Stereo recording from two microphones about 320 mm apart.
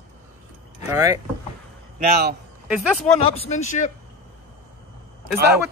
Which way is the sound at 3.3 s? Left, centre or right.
Left.